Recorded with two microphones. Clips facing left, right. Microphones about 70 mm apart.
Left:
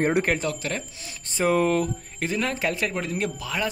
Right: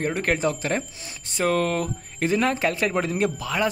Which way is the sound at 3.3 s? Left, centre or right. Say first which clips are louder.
Right 3 dB; centre.